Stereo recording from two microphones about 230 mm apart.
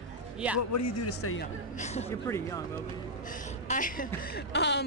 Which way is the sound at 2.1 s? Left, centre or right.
Centre.